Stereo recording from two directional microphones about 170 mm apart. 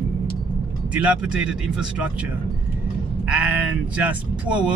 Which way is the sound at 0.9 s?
5° right (ahead or behind).